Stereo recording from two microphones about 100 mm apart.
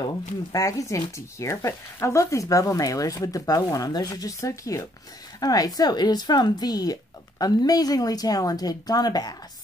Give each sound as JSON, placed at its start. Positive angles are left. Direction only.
{"t": 0.0, "sound": "speech", "side_deg": 35}